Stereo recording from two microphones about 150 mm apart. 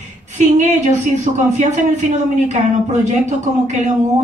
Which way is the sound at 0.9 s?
55° right (ahead or behind).